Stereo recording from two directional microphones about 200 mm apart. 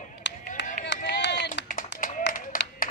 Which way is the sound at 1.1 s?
60° left (ahead or behind).